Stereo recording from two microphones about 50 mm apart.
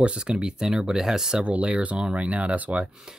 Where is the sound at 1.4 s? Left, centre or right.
Right.